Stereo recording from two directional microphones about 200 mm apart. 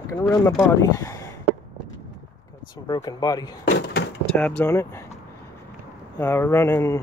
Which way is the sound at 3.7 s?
60° left (ahead or behind).